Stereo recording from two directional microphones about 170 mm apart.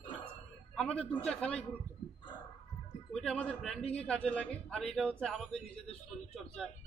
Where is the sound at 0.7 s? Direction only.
5° left (ahead or behind).